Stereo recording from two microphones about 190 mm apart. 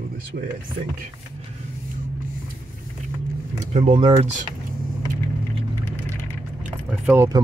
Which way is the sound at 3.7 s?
30° right (ahead or behind).